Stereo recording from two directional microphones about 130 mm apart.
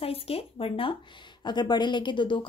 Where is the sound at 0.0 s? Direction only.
50° left (ahead or behind).